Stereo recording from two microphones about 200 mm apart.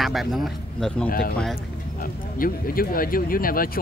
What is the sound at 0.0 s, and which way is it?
A man's voice, centre (ahead or behind).